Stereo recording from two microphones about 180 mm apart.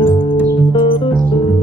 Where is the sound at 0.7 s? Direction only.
30° left (ahead or behind).